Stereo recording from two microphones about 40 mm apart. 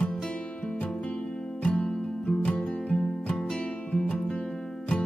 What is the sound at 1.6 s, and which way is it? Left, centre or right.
Music, left.